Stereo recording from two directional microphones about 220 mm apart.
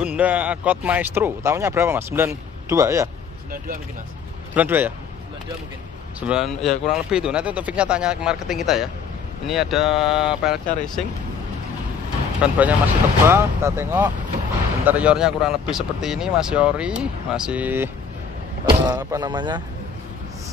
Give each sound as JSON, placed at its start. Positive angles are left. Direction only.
{"t": 0.0, "sound": "speech", "side_deg": -5}
{"t": 4.6, "sound": "speech", "side_deg": -10}
{"t": 6.2, "sound": "speech", "side_deg": 0}
{"t": 12.4, "sound": "speech", "side_deg": -5}
{"t": 18.9, "sound": "speech", "side_deg": -20}